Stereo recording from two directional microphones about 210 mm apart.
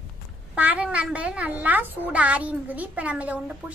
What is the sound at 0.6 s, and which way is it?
A child's voice, 5° right (ahead or behind).